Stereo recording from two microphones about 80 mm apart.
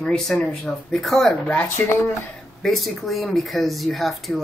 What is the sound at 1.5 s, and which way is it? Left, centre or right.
Speech, left.